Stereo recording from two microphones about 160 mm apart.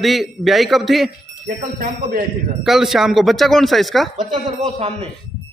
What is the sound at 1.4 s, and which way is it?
Speech, 60° right (ahead or behind).